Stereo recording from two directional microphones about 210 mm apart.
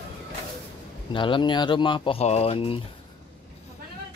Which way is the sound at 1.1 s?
25° left (ahead or behind).